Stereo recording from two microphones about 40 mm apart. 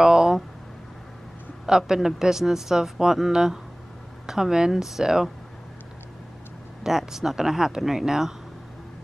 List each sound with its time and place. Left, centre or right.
0.0 s a sound: centre
1.7 s speech: centre
6.8 s speech: centre